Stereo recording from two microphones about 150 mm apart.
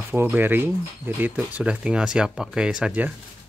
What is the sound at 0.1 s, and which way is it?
Speech, 10° right (ahead or behind).